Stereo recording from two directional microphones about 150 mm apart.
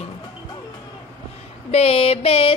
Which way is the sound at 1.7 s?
40° left (ahead or behind).